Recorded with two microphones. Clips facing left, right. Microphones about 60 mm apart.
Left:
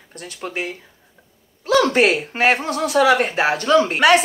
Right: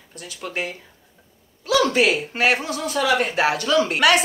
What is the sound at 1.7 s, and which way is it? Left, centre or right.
Speech, left.